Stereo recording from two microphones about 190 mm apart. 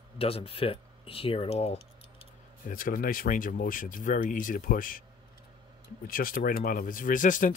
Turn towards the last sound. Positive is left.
turn(degrees=45)  # may be behind; listen again after turning